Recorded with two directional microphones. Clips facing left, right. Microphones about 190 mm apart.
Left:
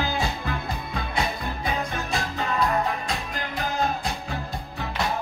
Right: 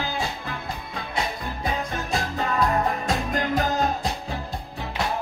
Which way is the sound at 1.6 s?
45° right (ahead or behind).